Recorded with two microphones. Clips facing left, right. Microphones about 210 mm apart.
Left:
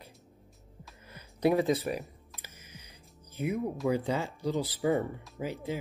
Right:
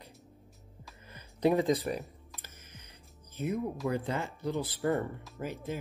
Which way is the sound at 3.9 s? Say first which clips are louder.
Left 3 dB; 15° left (ahead or behind).